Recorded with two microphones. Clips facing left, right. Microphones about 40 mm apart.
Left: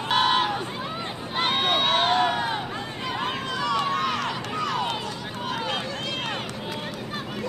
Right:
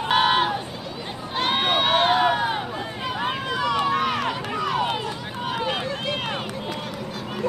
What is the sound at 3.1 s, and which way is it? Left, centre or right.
Run, centre.